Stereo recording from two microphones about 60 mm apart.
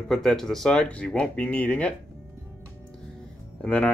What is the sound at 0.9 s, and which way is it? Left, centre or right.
Speech, left.